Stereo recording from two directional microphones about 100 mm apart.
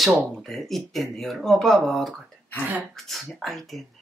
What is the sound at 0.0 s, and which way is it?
Speech, centre (ahead or behind).